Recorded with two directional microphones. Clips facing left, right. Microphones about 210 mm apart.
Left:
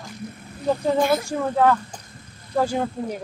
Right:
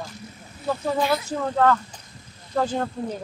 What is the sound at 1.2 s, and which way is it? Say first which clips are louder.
Speech: left 1 dB; 10° left (ahead or behind).